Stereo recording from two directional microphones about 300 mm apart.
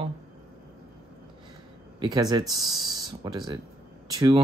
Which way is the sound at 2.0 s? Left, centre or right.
Centre.